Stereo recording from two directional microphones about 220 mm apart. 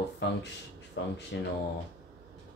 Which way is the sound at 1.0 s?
55° left (ahead or behind).